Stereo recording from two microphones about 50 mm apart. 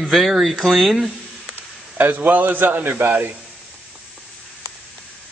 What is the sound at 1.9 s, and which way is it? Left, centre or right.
A man's voice, right.